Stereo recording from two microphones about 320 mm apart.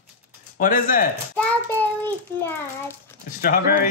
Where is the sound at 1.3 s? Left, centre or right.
Centre.